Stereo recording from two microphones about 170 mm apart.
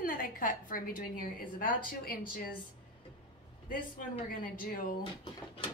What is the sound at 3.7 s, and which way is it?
A woman's voice, 55° left (ahead or behind).